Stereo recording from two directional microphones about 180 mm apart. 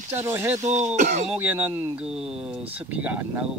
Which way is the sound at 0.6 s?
40° right (ahead or behind).